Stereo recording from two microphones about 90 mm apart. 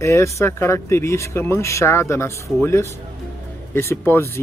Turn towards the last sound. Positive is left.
turn(degrees=25)  # may be behind; listen again after turning